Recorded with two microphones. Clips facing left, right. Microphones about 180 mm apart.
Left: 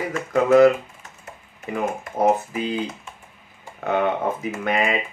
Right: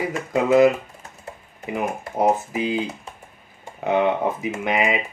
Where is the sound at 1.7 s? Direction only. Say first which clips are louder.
Even; 15° right (ahead or behind).